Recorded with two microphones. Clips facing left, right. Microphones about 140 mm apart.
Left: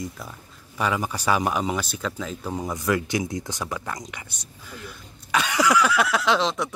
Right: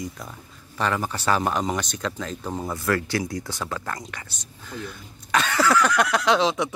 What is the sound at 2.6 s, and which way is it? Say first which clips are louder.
Speech: even; 15° left (ahead or behind).